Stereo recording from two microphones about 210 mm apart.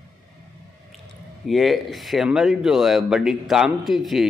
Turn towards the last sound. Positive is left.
turn(degrees=0)  # may be behind; listen again after turning